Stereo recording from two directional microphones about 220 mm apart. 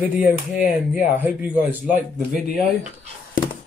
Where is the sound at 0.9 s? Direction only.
5° right (ahead or behind).